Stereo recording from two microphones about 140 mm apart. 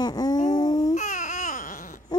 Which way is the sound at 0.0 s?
30° left (ahead or behind).